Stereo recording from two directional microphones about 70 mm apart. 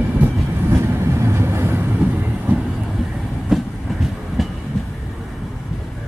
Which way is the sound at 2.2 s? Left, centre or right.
Right.